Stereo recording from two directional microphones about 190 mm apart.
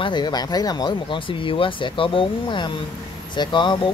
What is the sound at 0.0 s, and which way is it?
Speech, 25° left (ahead or behind).